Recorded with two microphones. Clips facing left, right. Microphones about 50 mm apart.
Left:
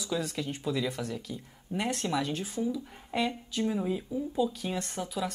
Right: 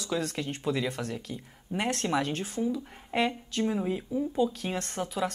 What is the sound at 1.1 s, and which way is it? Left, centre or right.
Speech, right.